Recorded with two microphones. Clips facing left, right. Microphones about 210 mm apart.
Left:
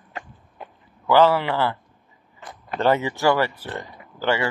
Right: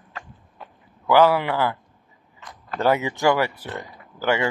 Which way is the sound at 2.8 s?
10° right (ahead or behind).